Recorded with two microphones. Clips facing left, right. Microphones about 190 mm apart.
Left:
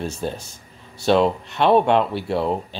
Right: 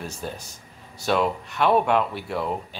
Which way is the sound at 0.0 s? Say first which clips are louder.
Left 6 dB; 25° left (ahead or behind).